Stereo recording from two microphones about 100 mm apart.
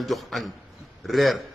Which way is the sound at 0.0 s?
Centre (ahead or behind).